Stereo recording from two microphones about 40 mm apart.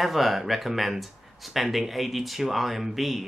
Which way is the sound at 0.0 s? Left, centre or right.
Centre.